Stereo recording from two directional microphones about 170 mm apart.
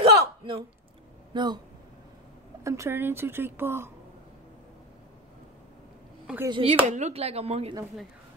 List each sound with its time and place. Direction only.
0.0 s a sound: 30° right (ahead or behind)
1.3 s speech: 25° right (ahead or behind)
2.6 s a woman's voice: 15° right (ahead or behind)
6.4 s speech: 30° right (ahead or behind)
6.9 s speech: 40° right (ahead or behind)